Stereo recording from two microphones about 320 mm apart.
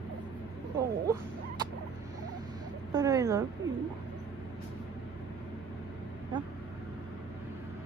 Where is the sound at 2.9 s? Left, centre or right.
Centre.